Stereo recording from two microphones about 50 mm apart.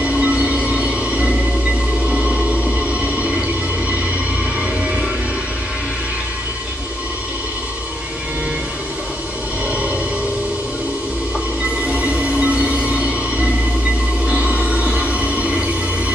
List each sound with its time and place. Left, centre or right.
0.0 s train: right
2.0 s music: right
3.2 s a sound: right
11.9 s train: right
14.2 s music: right